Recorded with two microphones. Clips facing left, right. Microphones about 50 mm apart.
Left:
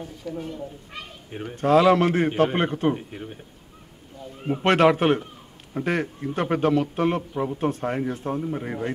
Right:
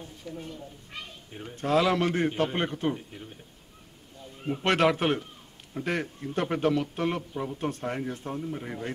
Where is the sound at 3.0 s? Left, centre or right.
Left.